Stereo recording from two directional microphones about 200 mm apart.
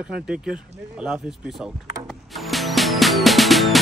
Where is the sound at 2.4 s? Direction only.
Centre (ahead or behind).